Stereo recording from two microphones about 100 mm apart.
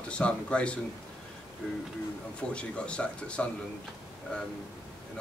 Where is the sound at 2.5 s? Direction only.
10° left (ahead or behind).